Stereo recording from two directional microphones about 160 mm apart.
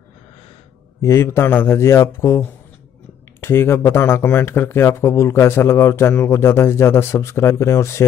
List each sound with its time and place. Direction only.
1.0 s speech: 15° left (ahead or behind)